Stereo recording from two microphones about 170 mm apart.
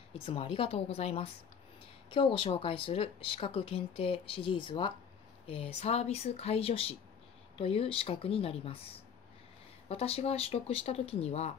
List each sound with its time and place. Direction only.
0.1 s speech: 35° left (ahead or behind)